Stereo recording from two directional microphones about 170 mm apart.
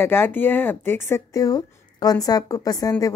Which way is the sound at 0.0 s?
15° left (ahead or behind).